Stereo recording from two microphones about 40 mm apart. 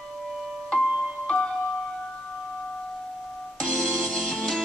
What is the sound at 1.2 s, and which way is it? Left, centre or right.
Music, centre.